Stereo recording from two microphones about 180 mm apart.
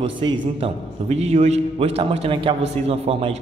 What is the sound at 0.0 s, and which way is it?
A man's voice, 30° right (ahead or behind).